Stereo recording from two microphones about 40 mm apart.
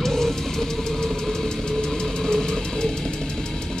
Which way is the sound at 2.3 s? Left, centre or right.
Centre.